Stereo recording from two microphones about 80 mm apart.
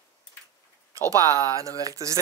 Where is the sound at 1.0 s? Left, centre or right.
Right.